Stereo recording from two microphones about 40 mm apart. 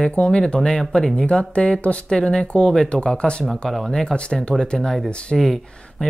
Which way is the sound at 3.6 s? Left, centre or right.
Centre.